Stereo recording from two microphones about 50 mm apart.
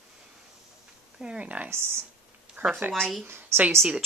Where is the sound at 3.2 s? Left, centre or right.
Right.